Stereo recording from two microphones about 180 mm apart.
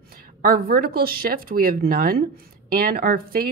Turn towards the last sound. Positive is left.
turn(degrees=-55)  # may be behind; listen again after turning